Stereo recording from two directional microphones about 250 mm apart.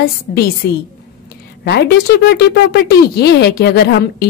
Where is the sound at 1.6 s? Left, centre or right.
Left.